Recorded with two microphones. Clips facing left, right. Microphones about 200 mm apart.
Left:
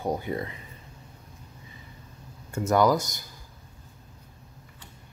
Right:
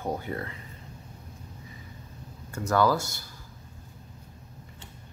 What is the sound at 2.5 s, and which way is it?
Speech, 20° left (ahead or behind).